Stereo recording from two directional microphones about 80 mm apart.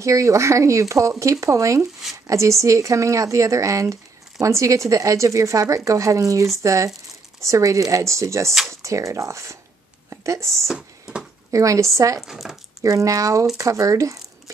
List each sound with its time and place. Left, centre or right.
0.0 s speech: right
10.0 s a sound: right
10.7 s a sound: centre
11.5 s a woman's voice: right
12.2 s speech: centre
12.8 s a woman's voice: right